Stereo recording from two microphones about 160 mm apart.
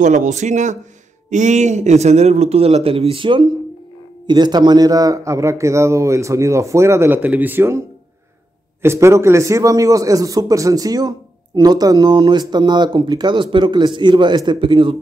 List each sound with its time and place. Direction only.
0.0 s a man's voice: 50° right (ahead or behind); by 7.8 s 15° right (ahead or behind)
8.8 s a man's voice: 15° right (ahead or behind)